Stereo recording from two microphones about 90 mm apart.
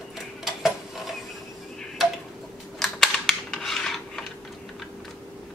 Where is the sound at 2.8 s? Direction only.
5° left (ahead or behind).